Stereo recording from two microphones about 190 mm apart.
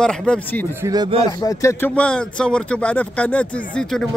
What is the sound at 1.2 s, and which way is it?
Speech, 20° left (ahead or behind).